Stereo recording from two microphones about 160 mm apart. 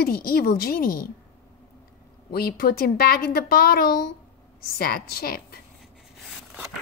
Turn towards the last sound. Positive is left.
turn(degrees=70)  # may be behind; listen again after turning